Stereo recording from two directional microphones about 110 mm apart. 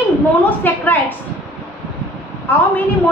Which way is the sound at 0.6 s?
15° left (ahead or behind).